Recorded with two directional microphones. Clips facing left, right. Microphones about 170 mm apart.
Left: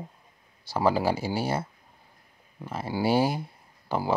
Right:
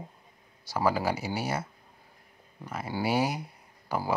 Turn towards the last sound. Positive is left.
turn(degrees=25)  # may be behind; listen again after turning